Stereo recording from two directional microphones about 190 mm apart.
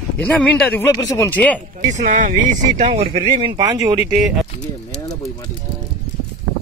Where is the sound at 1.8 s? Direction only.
40° right (ahead or behind); by 4.2 s 15° right (ahead or behind).